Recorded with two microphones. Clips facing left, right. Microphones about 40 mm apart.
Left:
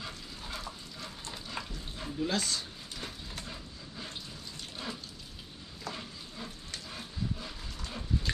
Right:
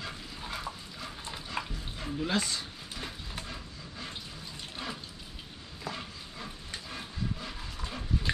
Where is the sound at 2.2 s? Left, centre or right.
Centre.